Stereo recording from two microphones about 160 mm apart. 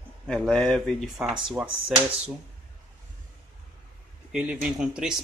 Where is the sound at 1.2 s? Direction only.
5° right (ahead or behind).